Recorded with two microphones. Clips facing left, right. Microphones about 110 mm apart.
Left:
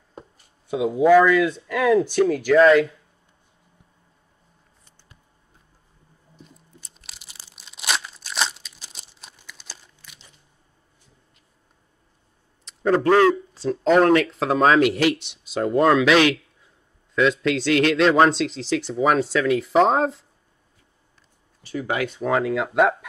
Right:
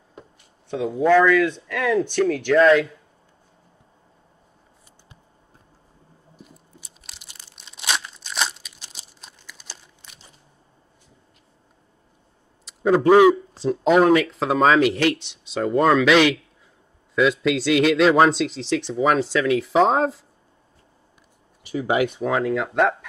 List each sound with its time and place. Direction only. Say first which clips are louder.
0.7 s speech: left 2 dB; 10° left (ahead or behind)
6.3 s tearing: right 1 dB; 5° right (ahead or behind)
9.5 s crumpling: even; centre (ahead or behind)
10.0 s biting: even; 25° right (ahead or behind)
12.6 s speech: right 2 dB; 5° right (ahead or behind)
21.6 s speech: right 4 dB; 15° right (ahead or behind)
22.2 s speech: even; centre (ahead or behind)